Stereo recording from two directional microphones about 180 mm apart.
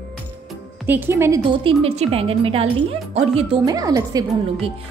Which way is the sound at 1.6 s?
30° right (ahead or behind).